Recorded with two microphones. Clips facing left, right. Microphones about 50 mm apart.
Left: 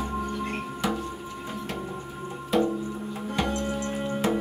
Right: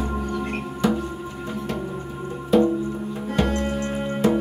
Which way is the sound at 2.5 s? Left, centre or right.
Centre.